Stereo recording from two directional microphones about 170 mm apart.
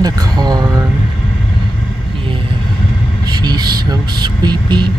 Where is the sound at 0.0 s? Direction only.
25° right (ahead or behind).